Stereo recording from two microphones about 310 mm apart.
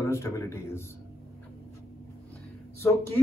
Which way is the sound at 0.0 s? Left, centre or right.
Centre.